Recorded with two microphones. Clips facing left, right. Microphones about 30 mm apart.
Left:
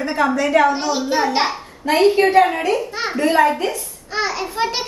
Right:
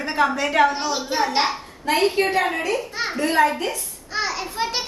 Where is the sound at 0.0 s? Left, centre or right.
Centre.